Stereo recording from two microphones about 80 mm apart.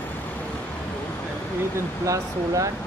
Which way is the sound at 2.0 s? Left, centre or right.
Right.